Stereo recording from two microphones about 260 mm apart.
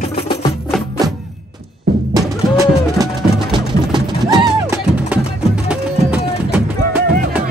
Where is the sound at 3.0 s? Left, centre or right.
Centre.